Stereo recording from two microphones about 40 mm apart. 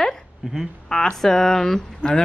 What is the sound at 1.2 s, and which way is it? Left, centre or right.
Speech, centre.